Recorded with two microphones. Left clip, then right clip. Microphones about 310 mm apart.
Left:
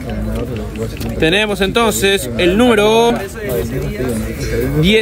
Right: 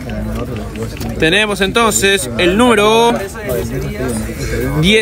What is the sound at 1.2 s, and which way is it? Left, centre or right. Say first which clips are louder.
Speech: right 1 dB; centre.